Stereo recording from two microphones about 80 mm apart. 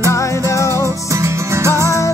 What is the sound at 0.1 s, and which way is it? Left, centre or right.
Music, left.